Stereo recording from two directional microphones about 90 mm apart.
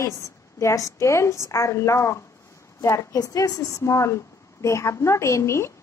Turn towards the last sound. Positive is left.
turn(degrees=30)  # may be behind; listen again after turning